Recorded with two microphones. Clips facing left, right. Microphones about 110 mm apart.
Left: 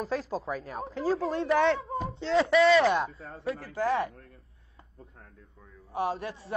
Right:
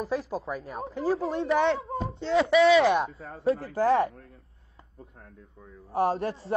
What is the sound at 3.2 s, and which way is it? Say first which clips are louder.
A man's voice: right 7 dB; 30° right (ahead or behind).